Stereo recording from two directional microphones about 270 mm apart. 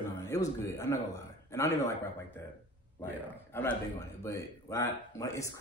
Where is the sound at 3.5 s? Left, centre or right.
Centre.